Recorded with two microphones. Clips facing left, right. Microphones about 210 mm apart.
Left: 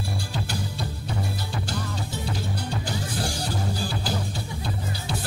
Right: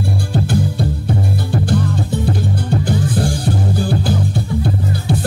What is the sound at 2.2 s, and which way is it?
Music, 55° right (ahead or behind).